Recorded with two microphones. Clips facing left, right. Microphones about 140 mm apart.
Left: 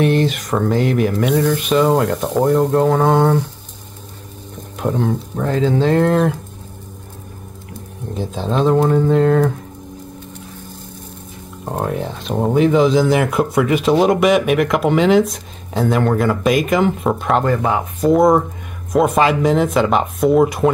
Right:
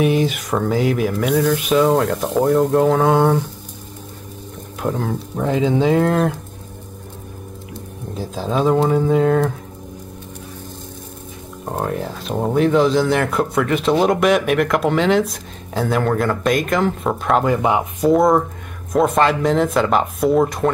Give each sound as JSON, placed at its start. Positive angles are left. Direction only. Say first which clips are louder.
{"t": 0.0, "sound": "speech", "louder": "left 1 dB", "side_deg": -10}
{"t": 4.7, "sound": "speech", "louder": "left 3 dB", "side_deg": 0}
{"t": 8.1, "sound": "speech", "louder": "left 1 dB", "side_deg": -5}
{"t": 11.6, "sound": "speech", "louder": "left 1 dB", "side_deg": 0}
{"t": 17.6, "sound": "speech", "louder": "right 1 dB", "side_deg": -15}
{"t": 18.0, "sound": "speech", "louder": "left 2 dB", "side_deg": 0}